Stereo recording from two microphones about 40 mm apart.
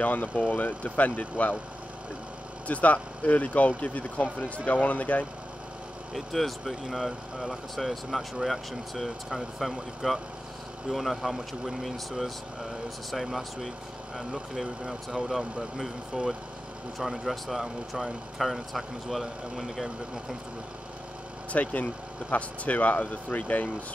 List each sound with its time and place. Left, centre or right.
0.0 s speech: left
2.7 s speech: left
6.1 s speech: centre
21.5 s speech: left